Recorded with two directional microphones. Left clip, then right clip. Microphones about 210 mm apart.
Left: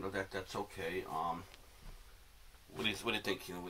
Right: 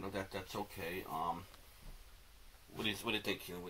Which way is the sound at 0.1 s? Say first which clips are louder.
Left 3 dB; 20° left (ahead or behind).